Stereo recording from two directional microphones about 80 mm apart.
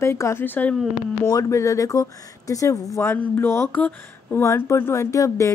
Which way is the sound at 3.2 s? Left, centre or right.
Left.